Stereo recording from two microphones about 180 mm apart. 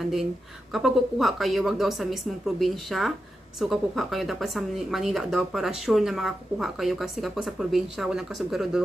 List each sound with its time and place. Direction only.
0.7 s speech: centre (ahead or behind)